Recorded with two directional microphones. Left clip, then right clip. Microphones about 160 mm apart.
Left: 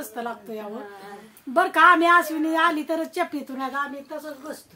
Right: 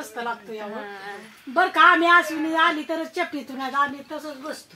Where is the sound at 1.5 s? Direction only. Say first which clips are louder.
Even; 30° left (ahead or behind).